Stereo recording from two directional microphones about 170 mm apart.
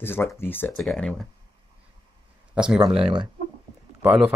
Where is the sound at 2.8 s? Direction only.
30° right (ahead or behind).